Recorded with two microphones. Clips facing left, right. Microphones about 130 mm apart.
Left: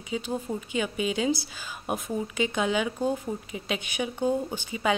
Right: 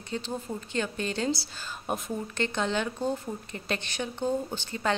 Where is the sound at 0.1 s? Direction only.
10° left (ahead or behind).